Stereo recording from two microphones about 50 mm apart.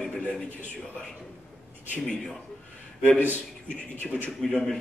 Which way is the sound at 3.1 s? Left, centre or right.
Right.